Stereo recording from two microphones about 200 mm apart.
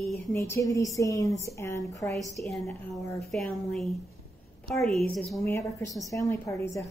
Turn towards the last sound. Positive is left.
turn(degrees=15)  # may be behind; listen again after turning